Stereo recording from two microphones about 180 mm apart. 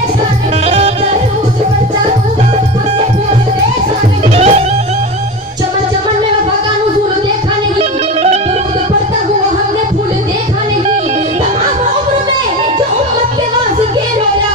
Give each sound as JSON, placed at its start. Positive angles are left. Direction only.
{"t": 4.4, "sound": "music", "side_deg": -40}